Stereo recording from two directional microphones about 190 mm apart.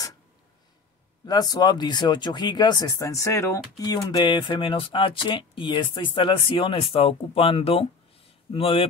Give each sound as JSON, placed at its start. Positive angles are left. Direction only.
{"t": 1.2, "sound": "speech", "side_deg": 20}